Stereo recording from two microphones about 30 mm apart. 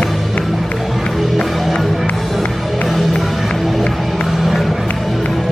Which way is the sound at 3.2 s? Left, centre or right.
Centre.